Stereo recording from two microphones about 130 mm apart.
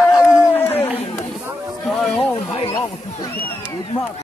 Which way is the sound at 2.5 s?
45° left (ahead or behind).